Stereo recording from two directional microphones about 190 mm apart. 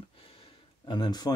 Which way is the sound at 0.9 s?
20° left (ahead or behind).